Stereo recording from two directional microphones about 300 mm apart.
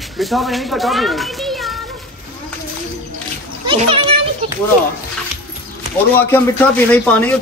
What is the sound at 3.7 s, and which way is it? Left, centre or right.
Speech, centre.